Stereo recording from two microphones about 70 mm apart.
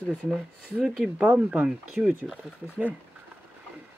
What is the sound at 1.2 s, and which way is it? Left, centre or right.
Speech, right.